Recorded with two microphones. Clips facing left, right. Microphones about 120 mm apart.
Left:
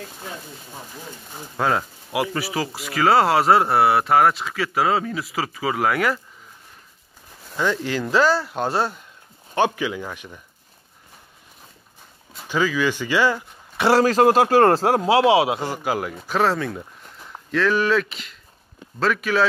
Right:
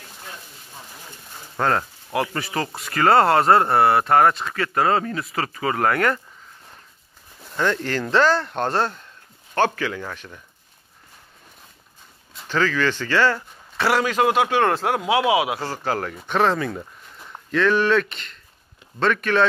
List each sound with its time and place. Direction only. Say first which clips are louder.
1.6 s speech: even; 5° left (ahead or behind)
7.5 s speech: even; 5° left (ahead or behind)
12.4 s speech: even; 10° left (ahead or behind)
13.8 s speech: left 4 dB; 35° left (ahead or behind)
15.6 s speech: left 1 dB; 15° left (ahead or behind)